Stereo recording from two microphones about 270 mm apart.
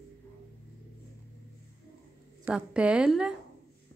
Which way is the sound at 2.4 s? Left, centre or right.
Centre.